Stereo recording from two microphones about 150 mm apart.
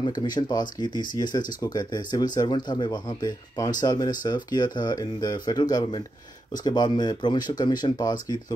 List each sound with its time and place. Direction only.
0.0 s speech: 30° left (ahead or behind)